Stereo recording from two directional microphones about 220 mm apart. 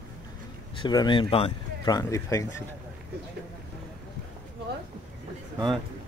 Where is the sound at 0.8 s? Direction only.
20° left (ahead or behind).